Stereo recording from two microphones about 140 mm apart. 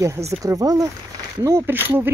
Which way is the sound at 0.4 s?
25° right (ahead or behind).